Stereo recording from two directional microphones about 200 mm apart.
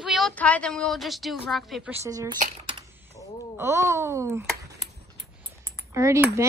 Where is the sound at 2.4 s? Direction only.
30° right (ahead or behind).